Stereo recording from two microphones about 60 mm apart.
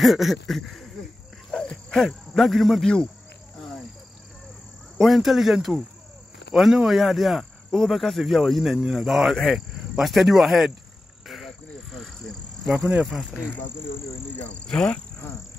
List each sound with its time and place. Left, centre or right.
0.0 s speech: centre
4.9 s speech: centre
11.2 s frog: centre
12.7 s speech: centre
14.3 s speech: left
14.7 s frog: centre